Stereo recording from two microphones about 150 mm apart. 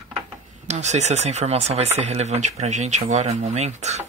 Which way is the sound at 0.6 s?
50° right (ahead or behind).